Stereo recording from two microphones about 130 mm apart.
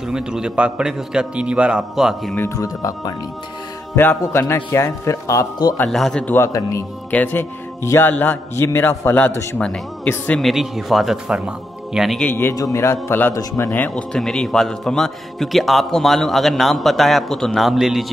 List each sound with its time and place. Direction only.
0.1 s a man's voice: 5° right (ahead or behind)
2.3 s speech: 20° left (ahead or behind)
5.9 s a man's voice: centre (ahead or behind)
6.2 s speech: 15° left (ahead or behind)
10.4 s a man's voice: centre (ahead or behind)
12.2 s speech: 15° left (ahead or behind)
13.7 s a man's voice: 10° left (ahead or behind)